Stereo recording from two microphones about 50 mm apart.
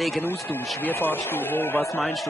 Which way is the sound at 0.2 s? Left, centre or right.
Left.